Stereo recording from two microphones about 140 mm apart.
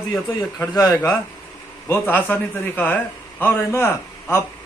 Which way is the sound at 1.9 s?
15° left (ahead or behind).